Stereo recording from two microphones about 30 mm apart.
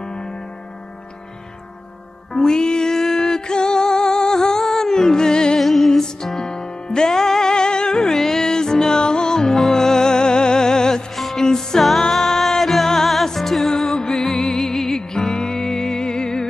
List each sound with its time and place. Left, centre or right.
0.0 s music: left
2.3 s music: left
5.6 s music: centre
6.4 s music: left
11.1 s music: centre
11.4 s music: centre
13.8 s music: left